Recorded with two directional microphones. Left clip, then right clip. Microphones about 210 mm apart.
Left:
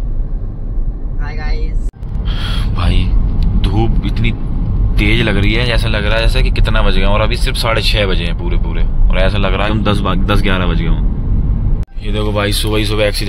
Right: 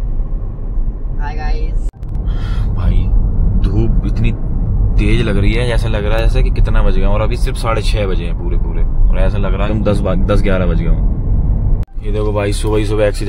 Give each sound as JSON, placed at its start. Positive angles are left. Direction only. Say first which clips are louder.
{"t": 2.2, "sound": "a sound", "louder": "left 7 dB", "side_deg": 0}
{"t": 3.6, "sound": "vehicle", "louder": "left 3 dB", "side_deg": 5}
{"t": 4.9, "sound": "speech", "louder": "left 4 dB", "side_deg": 5}
{"t": 12.1, "sound": "speech", "louder": "left 1 dB", "side_deg": -15}